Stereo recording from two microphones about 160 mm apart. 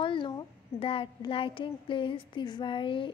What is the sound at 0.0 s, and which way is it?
A woman's voice, 30° left (ahead or behind).